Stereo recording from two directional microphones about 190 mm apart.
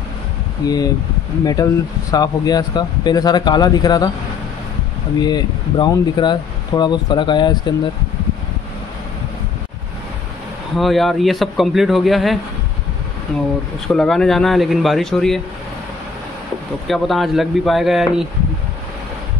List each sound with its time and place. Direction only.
0.7 s speech: 20° left (ahead or behind)
5.2 s speech: 20° left (ahead or behind)
10.8 s a man's voice: centre (ahead or behind)
13.8 s a man's voice: centre (ahead or behind)
16.8 s a man's voice: centre (ahead or behind)